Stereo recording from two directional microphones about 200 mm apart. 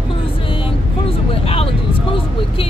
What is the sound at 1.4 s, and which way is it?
Speech, 30° left (ahead or behind).